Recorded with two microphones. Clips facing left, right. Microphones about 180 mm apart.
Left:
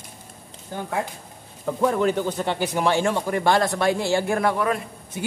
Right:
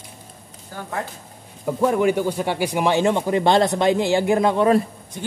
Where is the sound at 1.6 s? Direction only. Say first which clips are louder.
Right 2 dB; 10° right (ahead or behind).